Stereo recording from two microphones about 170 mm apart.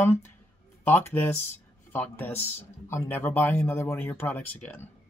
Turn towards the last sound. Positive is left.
turn(degrees=10)  # may be behind; listen again after turning